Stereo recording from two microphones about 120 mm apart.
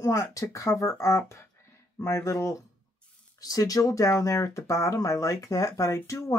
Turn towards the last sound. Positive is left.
turn(degrees=25)  # may be behind; listen again after turning